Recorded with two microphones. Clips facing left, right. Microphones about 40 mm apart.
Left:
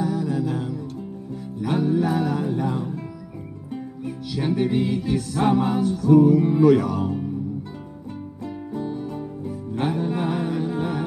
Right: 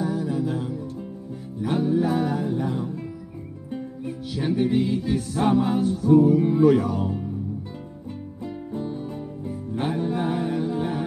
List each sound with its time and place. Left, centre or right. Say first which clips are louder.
0.0 s music: left 1 dB; left
4.4 s music: even; left
5.7 s music: left 1 dB; left
8.8 s music: left 2 dB; centre
9.8 s music: left 1 dB; left